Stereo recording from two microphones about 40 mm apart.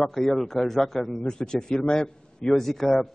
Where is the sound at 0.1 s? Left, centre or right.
Centre.